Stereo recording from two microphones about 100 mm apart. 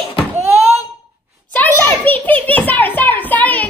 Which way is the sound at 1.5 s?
15° left (ahead or behind).